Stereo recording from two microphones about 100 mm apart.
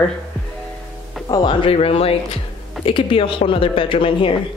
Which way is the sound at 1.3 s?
55° left (ahead or behind).